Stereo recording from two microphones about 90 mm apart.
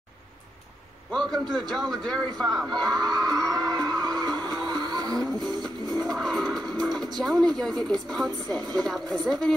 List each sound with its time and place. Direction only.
1.1 s a man's voice: 5° left (ahead or behind)
3.4 s vehicle: 45° right (ahead or behind)
4.3 s music: centre (ahead or behind)
4.6 s vehicle: 45° right (ahead or behind)
5.2 s music: centre (ahead or behind)
7.2 s a man's voice: 5° left (ahead or behind)